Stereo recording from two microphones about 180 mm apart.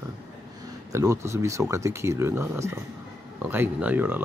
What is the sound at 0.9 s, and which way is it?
Speech, 15° right (ahead or behind).